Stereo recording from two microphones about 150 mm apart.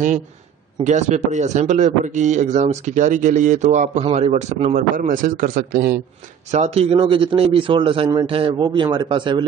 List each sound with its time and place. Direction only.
0.8 s a man's voice: 50° right (ahead or behind); by 5.9 s 85° right
6.5 s a man's voice: 45° right (ahead or behind)